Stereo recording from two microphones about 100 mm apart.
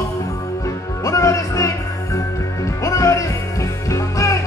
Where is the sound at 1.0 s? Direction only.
35° left (ahead or behind).